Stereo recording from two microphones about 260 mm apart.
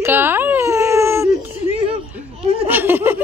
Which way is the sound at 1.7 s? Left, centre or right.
Right.